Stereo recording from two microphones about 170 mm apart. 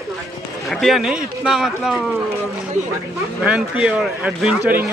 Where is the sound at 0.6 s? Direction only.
Centre (ahead or behind).